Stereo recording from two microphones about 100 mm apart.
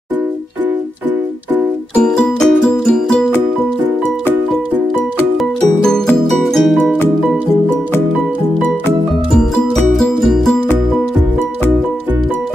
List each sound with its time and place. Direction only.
2.0 s music: 5° left (ahead or behind)
6.4 s music: centre (ahead or behind)
9.9 s music: 5° left (ahead or behind)